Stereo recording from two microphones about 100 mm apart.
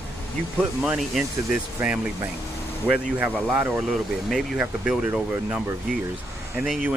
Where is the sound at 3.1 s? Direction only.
15° right (ahead or behind).